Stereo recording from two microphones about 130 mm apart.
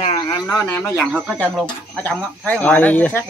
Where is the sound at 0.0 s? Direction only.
50° left (ahead or behind).